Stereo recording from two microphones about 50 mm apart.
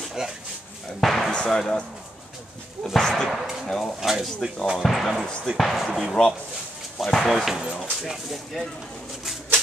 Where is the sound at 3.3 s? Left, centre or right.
Centre.